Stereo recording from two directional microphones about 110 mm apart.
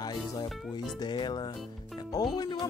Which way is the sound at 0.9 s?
40° left (ahead or behind).